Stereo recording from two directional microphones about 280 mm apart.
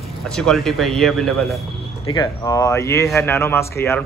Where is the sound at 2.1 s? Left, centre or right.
Centre.